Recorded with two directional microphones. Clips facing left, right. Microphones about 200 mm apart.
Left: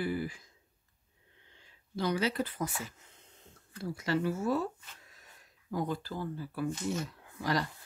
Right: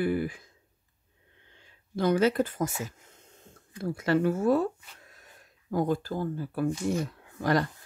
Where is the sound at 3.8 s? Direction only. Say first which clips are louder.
Right 6 dB; 55° right (ahead or behind).